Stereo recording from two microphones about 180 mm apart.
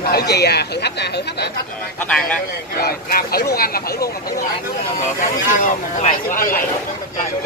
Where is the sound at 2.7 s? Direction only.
55° left (ahead or behind).